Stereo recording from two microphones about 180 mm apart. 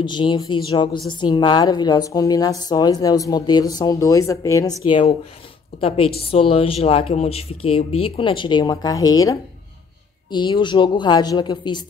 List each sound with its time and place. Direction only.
0.0 s a woman's voice: 25° left (ahead or behind)